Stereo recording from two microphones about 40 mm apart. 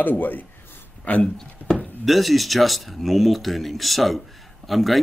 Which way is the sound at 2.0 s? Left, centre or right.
Centre.